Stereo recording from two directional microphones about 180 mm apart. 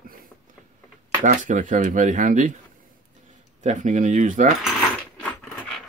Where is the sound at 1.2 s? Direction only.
45° right (ahead or behind).